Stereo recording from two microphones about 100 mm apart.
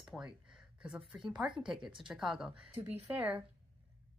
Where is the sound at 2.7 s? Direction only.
20° right (ahead or behind).